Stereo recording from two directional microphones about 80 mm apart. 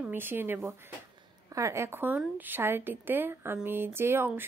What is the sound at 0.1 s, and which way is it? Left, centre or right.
A woman's voice, right.